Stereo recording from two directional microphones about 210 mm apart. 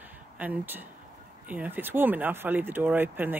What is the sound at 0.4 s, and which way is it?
Speech, 10° right (ahead or behind).